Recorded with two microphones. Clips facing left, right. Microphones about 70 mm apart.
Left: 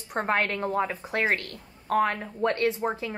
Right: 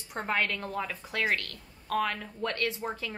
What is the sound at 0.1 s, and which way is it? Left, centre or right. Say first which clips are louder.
A woman's voice: left 4 dB; left.